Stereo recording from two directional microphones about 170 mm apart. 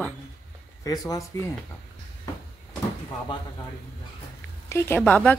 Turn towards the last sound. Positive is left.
turn(degrees=10)  # may be behind; listen again after turning